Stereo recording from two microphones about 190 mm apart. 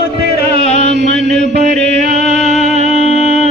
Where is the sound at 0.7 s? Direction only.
40° left (ahead or behind).